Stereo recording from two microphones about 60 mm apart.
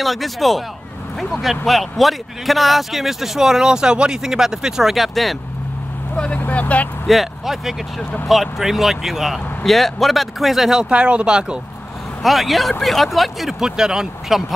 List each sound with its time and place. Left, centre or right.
0.0 s speech: centre
6.1 s speech: centre
7.1 s speech: centre
12.2 s speech: centre